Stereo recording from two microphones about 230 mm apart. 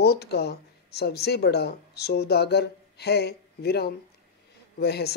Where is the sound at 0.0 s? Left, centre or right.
Left.